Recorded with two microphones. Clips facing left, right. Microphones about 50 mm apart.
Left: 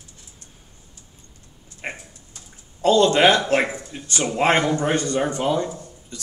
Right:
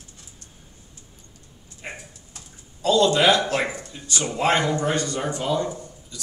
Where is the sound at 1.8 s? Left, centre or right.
Left.